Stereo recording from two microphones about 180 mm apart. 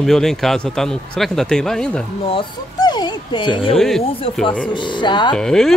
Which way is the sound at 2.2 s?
25° left (ahead or behind).